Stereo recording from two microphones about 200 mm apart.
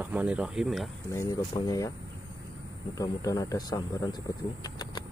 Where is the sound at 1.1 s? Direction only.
15° left (ahead or behind).